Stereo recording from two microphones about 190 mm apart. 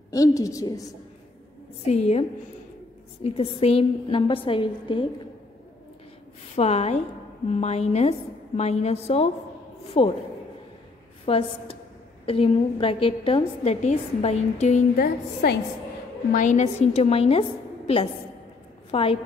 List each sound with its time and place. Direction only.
0.1 s a woman's voice: 15° left (ahead or behind)
1.9 s a woman's voice: 35° left (ahead or behind)
3.3 s a woman's voice: 30° left (ahead or behind)
6.5 s a woman's voice: 35° left (ahead or behind)
11.2 s a woman's voice: 30° left (ahead or behind)
15.0 s a woman's voice: 60° left (ahead or behind)
16.3 s a woman's voice: 40° left (ahead or behind)